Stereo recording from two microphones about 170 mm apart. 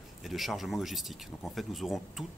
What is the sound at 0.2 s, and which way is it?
Speech, centre (ahead or behind).